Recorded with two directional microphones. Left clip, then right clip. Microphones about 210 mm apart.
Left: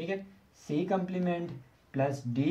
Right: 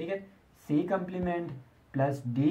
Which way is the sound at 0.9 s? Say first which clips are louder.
Even; 20° left (ahead or behind).